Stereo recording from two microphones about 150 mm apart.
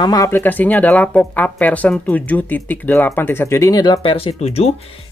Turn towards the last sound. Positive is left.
turn(degrees=45)  # may be behind; listen again after turning